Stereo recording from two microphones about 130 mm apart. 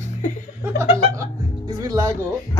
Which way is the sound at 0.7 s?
25° right (ahead or behind).